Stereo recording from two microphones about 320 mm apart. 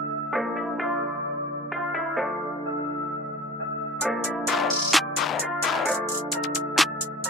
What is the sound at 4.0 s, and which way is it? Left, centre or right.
Music, centre.